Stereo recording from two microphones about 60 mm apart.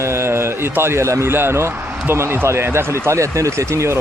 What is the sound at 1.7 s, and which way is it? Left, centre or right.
Speech, right.